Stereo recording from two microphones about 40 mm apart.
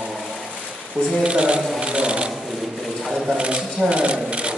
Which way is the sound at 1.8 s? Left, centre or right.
Right.